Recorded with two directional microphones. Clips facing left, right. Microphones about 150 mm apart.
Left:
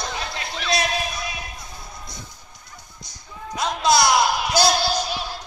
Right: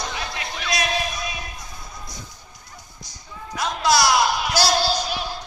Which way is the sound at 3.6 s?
20° left (ahead or behind).